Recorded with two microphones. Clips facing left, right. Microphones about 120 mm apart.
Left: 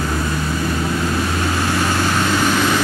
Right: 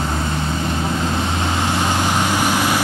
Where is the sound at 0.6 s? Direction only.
25° right (ahead or behind).